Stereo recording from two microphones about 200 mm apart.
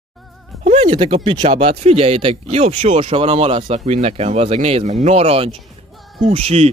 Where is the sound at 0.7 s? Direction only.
30° right (ahead or behind).